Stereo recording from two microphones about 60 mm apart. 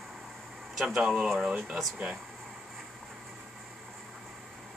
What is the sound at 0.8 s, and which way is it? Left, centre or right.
Speech, centre.